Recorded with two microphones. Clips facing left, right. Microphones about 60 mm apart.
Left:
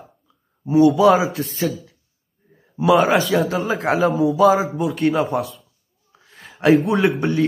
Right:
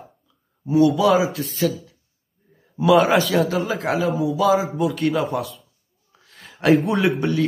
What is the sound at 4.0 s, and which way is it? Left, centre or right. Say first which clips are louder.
Speech: left 7 dB; left.